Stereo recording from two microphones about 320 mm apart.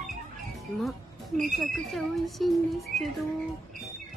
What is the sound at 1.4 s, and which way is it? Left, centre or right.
A woman's voice, centre.